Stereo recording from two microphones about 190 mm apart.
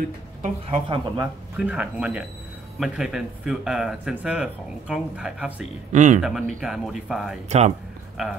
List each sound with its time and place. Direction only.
0.4 s a woman's voice: 30° right (ahead or behind)
1.6 s speech: 5° right (ahead or behind)
5.9 s speech: 40° right (ahead or behind)
6.2 s speech: centre (ahead or behind)
7.4 s speech: 35° right (ahead or behind)
8.2 s speech: centre (ahead or behind)